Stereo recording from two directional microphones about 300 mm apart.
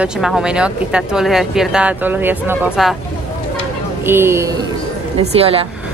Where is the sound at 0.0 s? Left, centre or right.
Centre.